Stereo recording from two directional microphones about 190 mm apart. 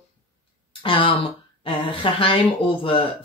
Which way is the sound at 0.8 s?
25° left (ahead or behind).